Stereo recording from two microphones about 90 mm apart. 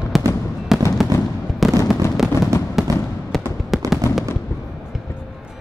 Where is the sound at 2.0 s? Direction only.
30° left (ahead or behind).